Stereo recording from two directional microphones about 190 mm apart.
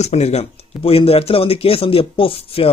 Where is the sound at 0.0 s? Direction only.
35° left (ahead or behind).